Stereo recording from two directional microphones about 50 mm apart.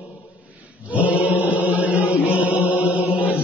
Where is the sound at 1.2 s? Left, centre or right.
Right.